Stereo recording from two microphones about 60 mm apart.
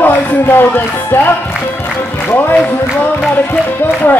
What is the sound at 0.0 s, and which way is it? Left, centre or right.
A man's voice, left.